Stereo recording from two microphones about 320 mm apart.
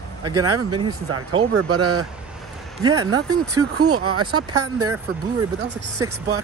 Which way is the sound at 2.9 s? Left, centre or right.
Centre.